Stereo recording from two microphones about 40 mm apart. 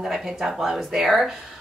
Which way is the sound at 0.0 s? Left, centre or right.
Centre.